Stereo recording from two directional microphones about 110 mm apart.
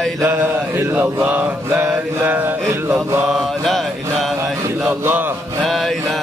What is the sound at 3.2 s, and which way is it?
Mantra, centre (ahead or behind).